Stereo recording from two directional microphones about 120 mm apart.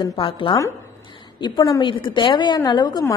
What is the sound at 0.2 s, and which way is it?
Speech, 45° left (ahead or behind).